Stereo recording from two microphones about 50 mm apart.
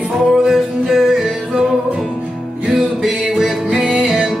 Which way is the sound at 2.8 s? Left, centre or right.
Centre.